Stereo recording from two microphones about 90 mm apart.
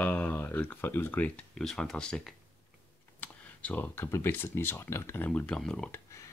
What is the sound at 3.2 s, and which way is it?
Computer keyboard, 20° left (ahead or behind).